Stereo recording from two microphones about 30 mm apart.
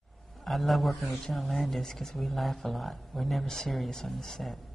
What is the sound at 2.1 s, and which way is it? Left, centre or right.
Speech, centre.